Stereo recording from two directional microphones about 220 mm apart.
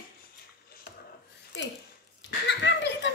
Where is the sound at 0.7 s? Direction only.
45° left (ahead or behind).